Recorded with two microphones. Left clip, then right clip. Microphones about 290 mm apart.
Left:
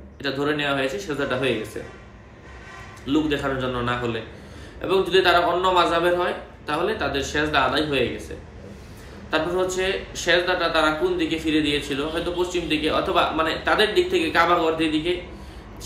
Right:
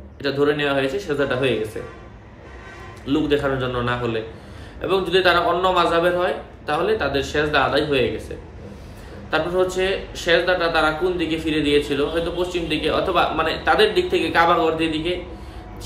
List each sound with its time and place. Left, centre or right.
0.2 s speech: centre
3.1 s speech: centre
9.3 s speech: centre